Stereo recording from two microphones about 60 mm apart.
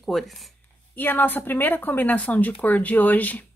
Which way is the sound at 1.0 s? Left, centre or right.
Left.